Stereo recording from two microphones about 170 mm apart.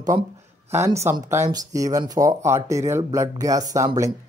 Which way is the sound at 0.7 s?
15° right (ahead or behind).